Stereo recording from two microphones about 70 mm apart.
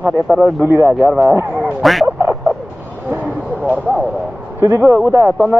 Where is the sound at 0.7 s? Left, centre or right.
Right.